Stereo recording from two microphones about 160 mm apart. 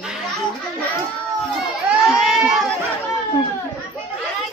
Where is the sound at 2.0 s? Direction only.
Centre (ahead or behind).